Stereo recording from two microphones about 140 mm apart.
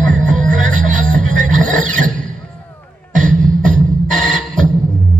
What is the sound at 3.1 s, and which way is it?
Beatboxing, 65° right (ahead or behind).